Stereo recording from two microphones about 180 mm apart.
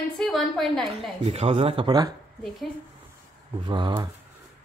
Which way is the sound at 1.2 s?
35° right (ahead or behind).